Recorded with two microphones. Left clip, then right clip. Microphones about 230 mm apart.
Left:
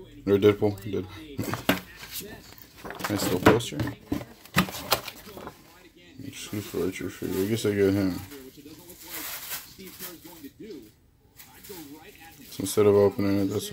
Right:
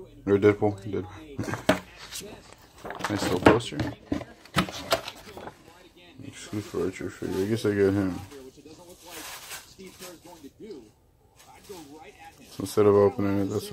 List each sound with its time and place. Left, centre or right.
0.2 s speech: centre
1.7 s a sound: centre
2.9 s speech: centre
4.7 s a sound: centre
6.3 s speech: centre
12.5 s speech: centre